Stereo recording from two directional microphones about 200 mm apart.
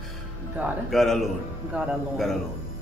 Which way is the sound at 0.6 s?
Centre (ahead or behind).